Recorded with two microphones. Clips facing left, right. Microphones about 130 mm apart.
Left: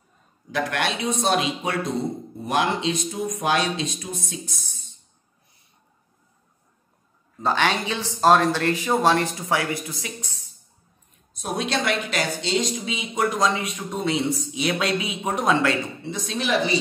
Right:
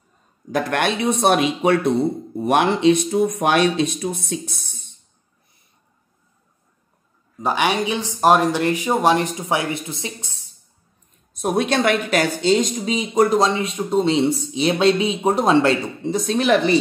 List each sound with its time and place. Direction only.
0.5 s speech: 50° right (ahead or behind)
7.3 s speech: 15° right (ahead or behind)
11.3 s speech: 50° right (ahead or behind)